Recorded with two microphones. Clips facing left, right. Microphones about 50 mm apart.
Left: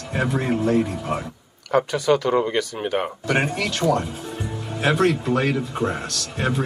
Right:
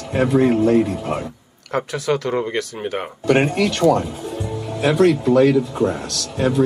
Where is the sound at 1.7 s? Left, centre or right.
Centre.